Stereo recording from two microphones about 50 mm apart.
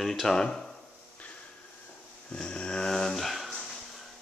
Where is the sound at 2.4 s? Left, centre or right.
Centre.